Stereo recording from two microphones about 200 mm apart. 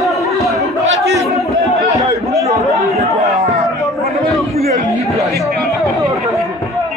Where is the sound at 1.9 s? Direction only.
15° right (ahead or behind).